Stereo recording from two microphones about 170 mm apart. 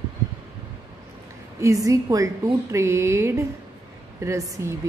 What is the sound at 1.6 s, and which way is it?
A woman's voice, 20° right (ahead or behind).